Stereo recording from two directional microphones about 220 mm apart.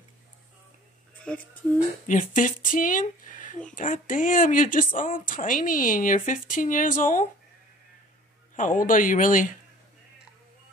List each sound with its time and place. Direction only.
1.3 s speech: 5° left (ahead or behind)
2.0 s a woman's voice: 35° left (ahead or behind)
8.5 s a woman's voice: 35° left (ahead or behind)